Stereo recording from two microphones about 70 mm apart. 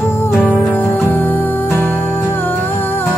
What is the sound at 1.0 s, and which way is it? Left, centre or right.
Music, left.